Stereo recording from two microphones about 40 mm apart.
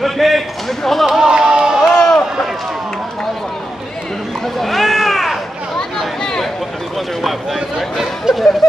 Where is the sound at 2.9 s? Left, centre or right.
Centre.